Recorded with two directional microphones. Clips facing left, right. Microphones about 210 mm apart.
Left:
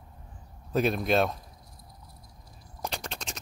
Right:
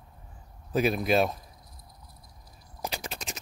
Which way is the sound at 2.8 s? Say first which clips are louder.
Even; 5° right (ahead or behind).